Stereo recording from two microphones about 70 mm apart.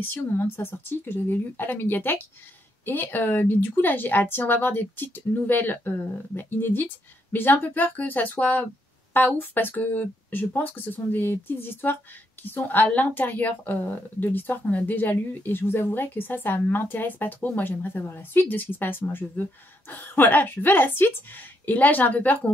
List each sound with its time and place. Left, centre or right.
0.0 s a woman's voice: left